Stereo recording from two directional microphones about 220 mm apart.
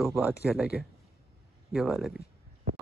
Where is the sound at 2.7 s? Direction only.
30° right (ahead or behind).